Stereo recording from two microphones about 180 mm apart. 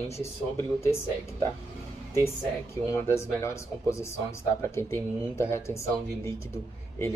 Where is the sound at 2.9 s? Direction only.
15° left (ahead or behind).